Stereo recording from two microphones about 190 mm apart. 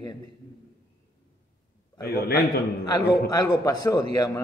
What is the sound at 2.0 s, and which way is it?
Speech, 55° left (ahead or behind).